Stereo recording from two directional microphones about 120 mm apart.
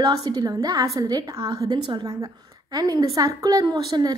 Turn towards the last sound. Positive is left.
turn(degrees=-35)  # may be behind; listen again after turning